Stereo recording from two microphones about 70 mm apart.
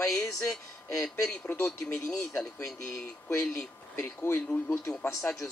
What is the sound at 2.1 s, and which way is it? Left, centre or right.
Speech, centre.